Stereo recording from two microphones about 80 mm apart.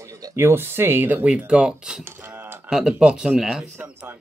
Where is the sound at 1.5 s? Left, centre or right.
Centre.